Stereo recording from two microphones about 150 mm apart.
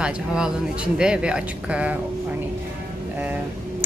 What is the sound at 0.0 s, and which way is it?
A woman's voice, 5° right (ahead or behind).